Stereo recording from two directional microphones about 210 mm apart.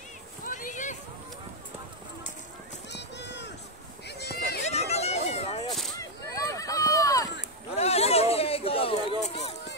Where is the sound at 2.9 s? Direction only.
55° left (ahead or behind).